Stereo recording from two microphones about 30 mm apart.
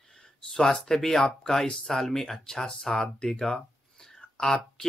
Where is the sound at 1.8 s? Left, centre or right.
Centre.